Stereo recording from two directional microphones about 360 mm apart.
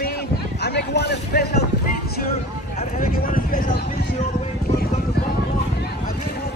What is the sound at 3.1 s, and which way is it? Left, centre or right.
Speech, left.